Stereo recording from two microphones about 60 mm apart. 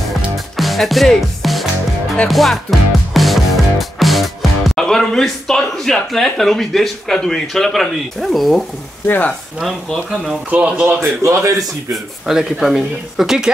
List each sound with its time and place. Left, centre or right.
0.6 s music: centre
7.2 s speech: centre
9.0 s speech: left
10.5 s speech: right
11.2 s a man's voice: right
11.9 s speech: centre